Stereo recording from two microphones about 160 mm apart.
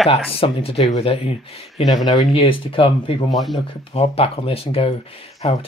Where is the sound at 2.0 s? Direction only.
30° left (ahead or behind).